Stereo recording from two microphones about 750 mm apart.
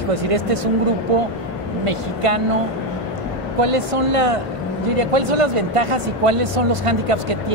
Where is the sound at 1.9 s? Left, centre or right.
Right.